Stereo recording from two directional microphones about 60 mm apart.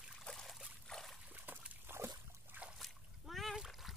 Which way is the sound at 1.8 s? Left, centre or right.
Right.